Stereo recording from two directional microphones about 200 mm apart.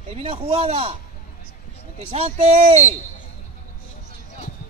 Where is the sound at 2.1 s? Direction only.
30° right (ahead or behind).